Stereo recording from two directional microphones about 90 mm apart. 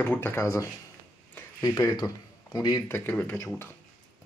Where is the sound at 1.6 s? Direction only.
45° left (ahead or behind).